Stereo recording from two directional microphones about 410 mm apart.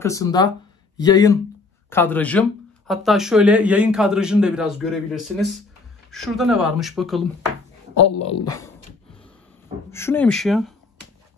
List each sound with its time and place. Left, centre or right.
0.0 s a man's voice: centre
8.0 s speech: left
8.5 s speech: centre
9.8 s a man's voice: centre